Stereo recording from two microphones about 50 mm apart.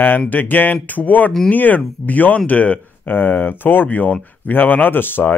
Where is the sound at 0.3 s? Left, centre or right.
Left.